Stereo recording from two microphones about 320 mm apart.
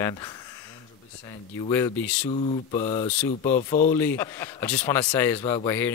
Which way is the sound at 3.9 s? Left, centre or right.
Centre.